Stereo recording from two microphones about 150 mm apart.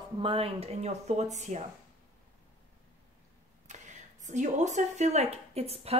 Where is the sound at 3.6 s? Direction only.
50° right (ahead or behind).